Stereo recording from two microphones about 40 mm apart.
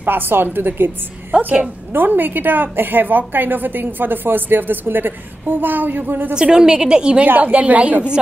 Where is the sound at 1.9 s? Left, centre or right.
Right.